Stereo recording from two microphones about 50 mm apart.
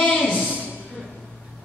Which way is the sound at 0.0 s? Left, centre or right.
Centre.